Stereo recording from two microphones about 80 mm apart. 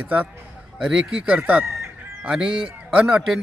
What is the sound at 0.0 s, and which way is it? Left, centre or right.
A man's voice, right.